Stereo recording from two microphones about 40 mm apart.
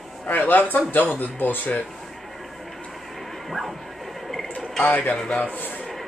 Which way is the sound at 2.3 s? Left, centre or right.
Centre.